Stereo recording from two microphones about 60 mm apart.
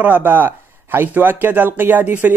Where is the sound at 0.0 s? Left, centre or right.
Right.